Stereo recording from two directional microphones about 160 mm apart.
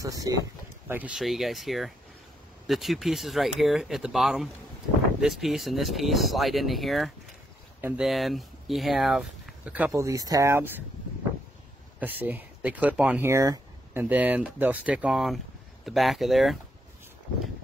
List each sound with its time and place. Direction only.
0.0 s speech: 20° right (ahead or behind)
0.8 s speech: 10° right (ahead or behind)
12.0 s speech: 10° right (ahead or behind)